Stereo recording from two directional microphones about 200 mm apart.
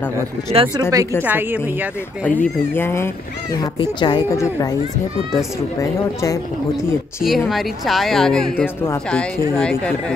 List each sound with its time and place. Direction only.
0.5 s speech: 25° right (ahead or behind)
1.2 s a woman's voice: 10° right (ahead or behind)
2.2 s a woman's voice: 10° left (ahead or behind)
7.2 s a woman's voice: centre (ahead or behind)